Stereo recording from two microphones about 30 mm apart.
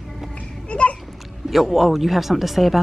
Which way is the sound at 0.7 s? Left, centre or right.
Left.